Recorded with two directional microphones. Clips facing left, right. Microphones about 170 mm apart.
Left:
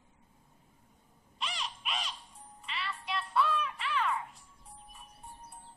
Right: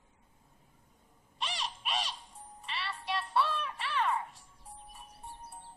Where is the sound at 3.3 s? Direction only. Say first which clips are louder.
Left 2 dB; 35° right (ahead or behind).